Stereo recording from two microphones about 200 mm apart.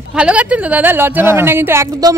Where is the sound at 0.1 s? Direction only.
5° right (ahead or behind).